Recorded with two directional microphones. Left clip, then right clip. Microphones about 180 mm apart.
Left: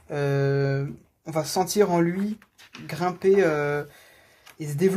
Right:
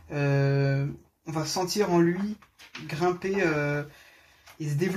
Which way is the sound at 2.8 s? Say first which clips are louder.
Left 5 dB; 45° left (ahead or behind).